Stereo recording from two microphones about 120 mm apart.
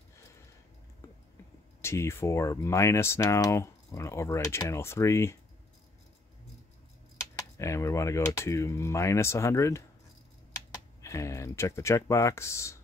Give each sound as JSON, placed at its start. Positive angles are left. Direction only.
{"t": 1.8, "sound": "speech", "side_deg": 20}
{"t": 7.3, "sound": "speech", "side_deg": 25}